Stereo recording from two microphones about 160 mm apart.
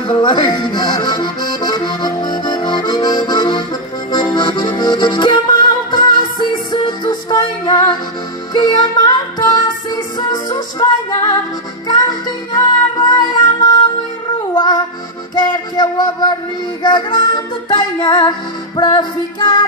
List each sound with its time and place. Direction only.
0.1 s accordion: 30° left (ahead or behind)
8.5 s music: 25° left (ahead or behind)
15.3 s music: 30° left (ahead or behind)